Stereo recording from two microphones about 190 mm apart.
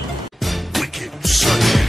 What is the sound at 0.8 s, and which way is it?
Music, centre (ahead or behind).